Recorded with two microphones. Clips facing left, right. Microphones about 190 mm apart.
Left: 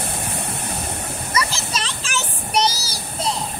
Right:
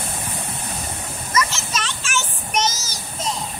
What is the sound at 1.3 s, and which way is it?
Child singing, 35° left (ahead or behind).